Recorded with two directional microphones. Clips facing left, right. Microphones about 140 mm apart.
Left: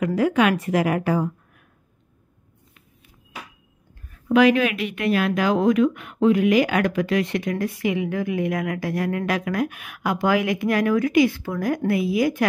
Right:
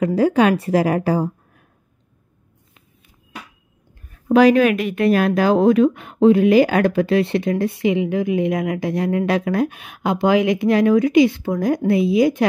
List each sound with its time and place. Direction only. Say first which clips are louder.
0.0 s a woman's voice: right 4 dB; 30° right (ahead or behind)
4.3 s speech: right 4 dB; 35° right (ahead or behind)